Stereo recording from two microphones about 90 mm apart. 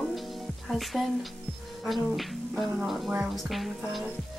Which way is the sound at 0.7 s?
Centre (ahead or behind).